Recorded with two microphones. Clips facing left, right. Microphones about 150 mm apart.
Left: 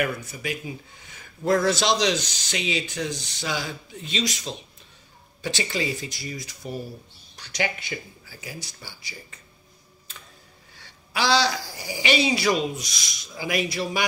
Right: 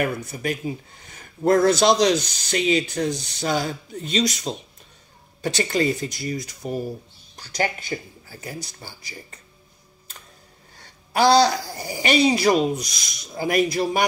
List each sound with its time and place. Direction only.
0.4 s speech: 45° right (ahead or behind)
8.3 s speech: 50° right (ahead or behind)
10.8 s speech: 50° right (ahead or behind)